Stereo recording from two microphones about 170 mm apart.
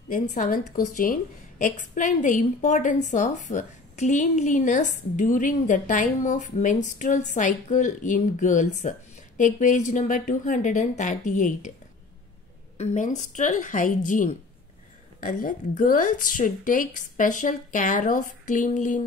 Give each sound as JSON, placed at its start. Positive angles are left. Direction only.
{"t": 0.1, "sound": "a woman's voice", "side_deg": 50}
{"t": 12.7, "sound": "a woman's voice", "side_deg": 40}